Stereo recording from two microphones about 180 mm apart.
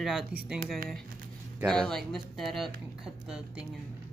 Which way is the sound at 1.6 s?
5° left (ahead or behind).